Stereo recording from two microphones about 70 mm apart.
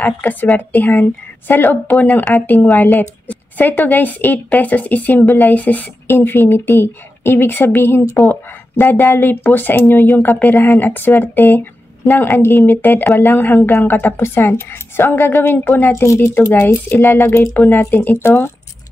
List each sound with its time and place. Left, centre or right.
0.0 s a woman's voice: left
6.1 s a woman's voice: left
12.3 s a woman's voice: left